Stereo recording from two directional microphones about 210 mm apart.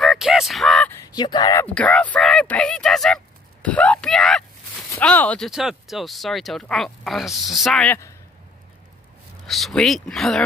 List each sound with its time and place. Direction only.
0.0 s a sound: centre (ahead or behind)
1.0 s speech: 20° left (ahead or behind)
1.7 s speech: 5° left (ahead or behind)
3.6 s a sound: 5° left (ahead or behind)
4.9 s speech: 5° left (ahead or behind)
9.5 s speech: centre (ahead or behind)